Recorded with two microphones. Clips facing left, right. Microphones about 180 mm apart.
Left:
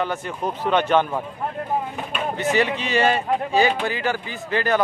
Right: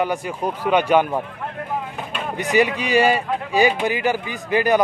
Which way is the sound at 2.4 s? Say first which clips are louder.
Right 3 dB; 15° right (ahead or behind).